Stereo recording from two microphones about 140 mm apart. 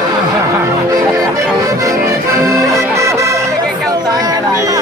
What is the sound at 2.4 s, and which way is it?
Music, 25° right (ahead or behind).